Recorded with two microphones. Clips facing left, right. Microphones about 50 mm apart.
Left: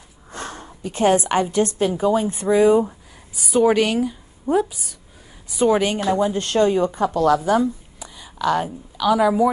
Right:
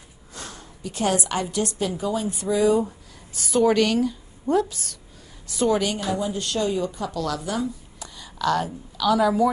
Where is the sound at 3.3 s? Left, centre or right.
Centre; by 7.7 s left.